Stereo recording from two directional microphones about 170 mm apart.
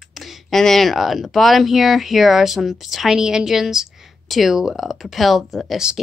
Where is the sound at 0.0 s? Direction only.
Centre (ahead or behind).